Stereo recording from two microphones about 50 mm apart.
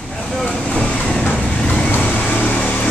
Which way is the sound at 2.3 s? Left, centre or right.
Left.